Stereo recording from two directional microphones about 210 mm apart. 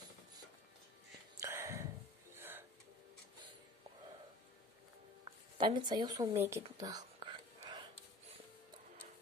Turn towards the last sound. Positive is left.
turn(degrees=-20)  # may be behind; listen again after turning